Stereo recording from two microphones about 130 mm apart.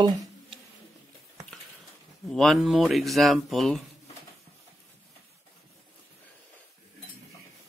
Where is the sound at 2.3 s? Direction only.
Centre (ahead or behind).